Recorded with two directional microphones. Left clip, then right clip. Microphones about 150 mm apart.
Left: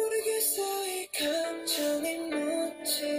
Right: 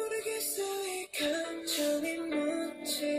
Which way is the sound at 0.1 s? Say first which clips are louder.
Left 5 dB; centre (ahead or behind).